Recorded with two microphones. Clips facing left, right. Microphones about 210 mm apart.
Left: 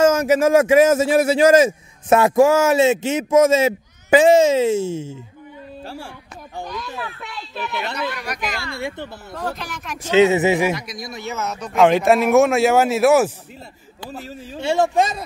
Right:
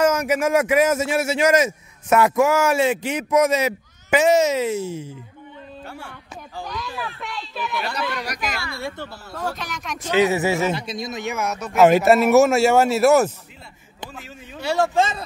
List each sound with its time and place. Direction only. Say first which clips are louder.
0.0 s a man's voice: left 4 dB; 30° left (ahead or behind)
5.9 s a sound: left 5 dB; 30° left (ahead or behind)
6.6 s a sound: left 1 dB; centre (ahead or behind)
7.7 s a man's voice: even; 25° left (ahead or behind)
9.5 s speech: left 1 dB; centre (ahead or behind)
10.1 s a man's voice: left 4 dB; 20° left (ahead or behind)
10.7 s speech: even; 25° right (ahead or behind); by 13.3 s 5° left (ahead or behind)
14.1 s a man's voice: left 6 dB; 35° left (ahead or behind); by 15.2 s 15° left (ahead or behind)